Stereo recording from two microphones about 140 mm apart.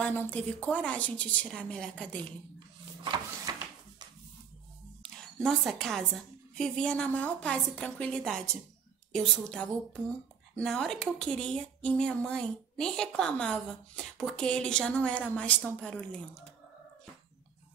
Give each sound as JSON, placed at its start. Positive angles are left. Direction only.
{"t": 0.0, "sound": "speech", "side_deg": 15}
{"t": 3.0, "sound": "printer", "side_deg": -30}
{"t": 5.0, "sound": "a woman's voice", "side_deg": 5}